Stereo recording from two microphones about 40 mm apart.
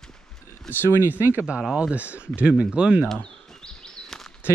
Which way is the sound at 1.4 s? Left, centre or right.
Right.